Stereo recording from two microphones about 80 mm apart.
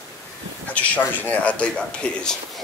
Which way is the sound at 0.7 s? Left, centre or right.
Centre.